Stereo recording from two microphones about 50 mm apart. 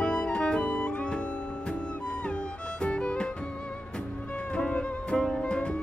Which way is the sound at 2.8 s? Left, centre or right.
Left.